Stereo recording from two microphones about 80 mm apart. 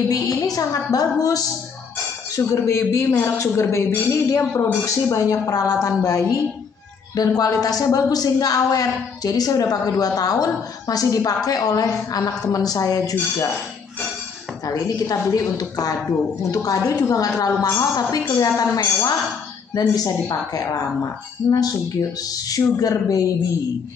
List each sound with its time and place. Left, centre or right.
0.1 s speech: left
14.7 s speech: left